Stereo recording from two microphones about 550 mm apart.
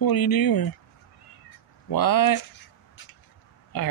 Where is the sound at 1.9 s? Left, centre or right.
Left.